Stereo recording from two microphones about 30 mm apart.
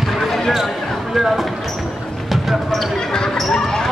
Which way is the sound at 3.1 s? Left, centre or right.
Left.